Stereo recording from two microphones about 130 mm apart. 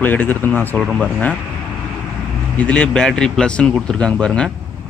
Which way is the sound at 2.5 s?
10° left (ahead or behind).